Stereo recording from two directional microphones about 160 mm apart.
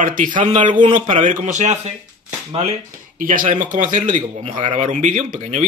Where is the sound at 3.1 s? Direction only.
55° right (ahead or behind).